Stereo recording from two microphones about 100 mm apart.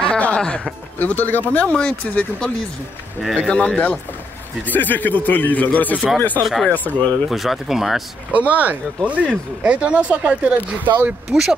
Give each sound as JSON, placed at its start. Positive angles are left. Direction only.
{"t": 0.0, "sound": "music", "side_deg": 10}
{"t": 0.9, "sound": "speech", "side_deg": 15}
{"t": 6.4, "sound": "speech", "side_deg": 0}
{"t": 8.3, "sound": "speech", "side_deg": -15}